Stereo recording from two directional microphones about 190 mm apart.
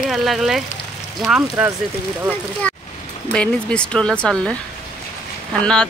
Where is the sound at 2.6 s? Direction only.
10° left (ahead or behind).